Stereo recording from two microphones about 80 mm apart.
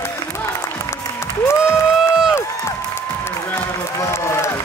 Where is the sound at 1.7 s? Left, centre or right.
Centre.